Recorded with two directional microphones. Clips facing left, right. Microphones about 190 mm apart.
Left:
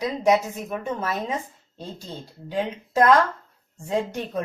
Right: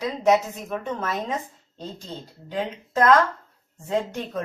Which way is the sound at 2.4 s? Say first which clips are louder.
Left 2 dB; 10° left (ahead or behind).